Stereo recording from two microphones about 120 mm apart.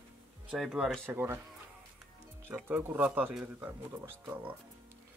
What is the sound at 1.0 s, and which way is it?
Speech, 20° right (ahead or behind).